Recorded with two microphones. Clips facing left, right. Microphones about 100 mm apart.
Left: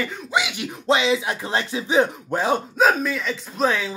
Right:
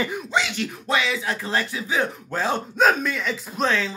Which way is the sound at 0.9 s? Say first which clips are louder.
Left 5 dB; 25° left (ahead or behind).